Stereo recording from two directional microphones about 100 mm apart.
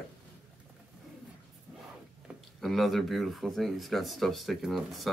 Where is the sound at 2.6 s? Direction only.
Centre (ahead or behind).